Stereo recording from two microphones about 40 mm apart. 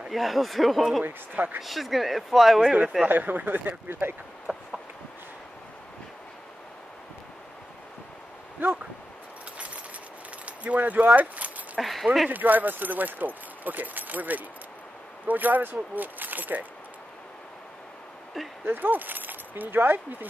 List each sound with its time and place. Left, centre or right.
0.1 s speech: centre
1.0 s speech: right
1.6 s speech: centre
3.1 s speech: right
4.5 s a sound: right
8.6 s speech: right
10.4 s dog: right
11.8 s speech: centre
12.3 s speech: right
18.7 s speech: right